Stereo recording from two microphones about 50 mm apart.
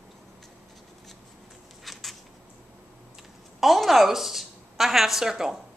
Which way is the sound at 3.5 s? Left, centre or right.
Centre.